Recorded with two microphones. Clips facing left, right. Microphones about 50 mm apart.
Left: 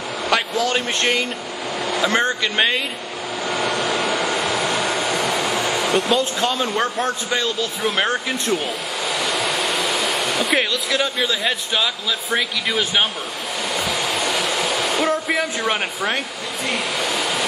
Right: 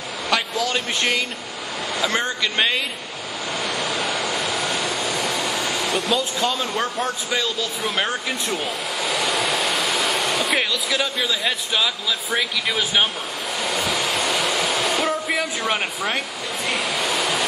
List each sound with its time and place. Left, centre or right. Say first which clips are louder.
0.3 s speech: left 2 dB; centre
4.6 s vehicle: left 3 dB; left
5.9 s a man's voice: left 3 dB; centre
13.7 s a sound: even; centre
16.6 s vehicle: left 1 dB; centre